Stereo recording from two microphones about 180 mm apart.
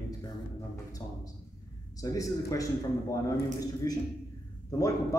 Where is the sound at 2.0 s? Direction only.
20° left (ahead or behind).